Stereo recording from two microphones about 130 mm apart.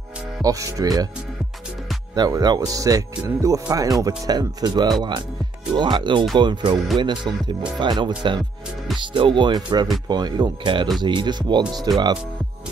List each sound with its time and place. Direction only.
0.4 s speech: 25° right (ahead or behind)
2.1 s speech: 30° right (ahead or behind)